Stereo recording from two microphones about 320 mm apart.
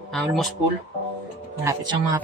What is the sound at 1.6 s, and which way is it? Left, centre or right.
Speech, centre.